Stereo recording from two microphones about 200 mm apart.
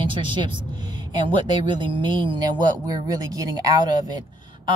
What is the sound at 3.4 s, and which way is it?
Speech, 20° right (ahead or behind).